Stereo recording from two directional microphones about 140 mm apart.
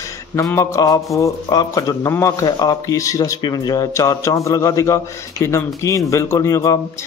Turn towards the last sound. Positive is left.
turn(degrees=20)  # may be behind; listen again after turning